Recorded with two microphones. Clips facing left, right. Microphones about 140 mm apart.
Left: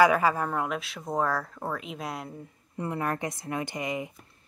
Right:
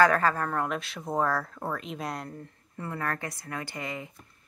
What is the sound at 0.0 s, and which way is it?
Speech, 10° left (ahead or behind).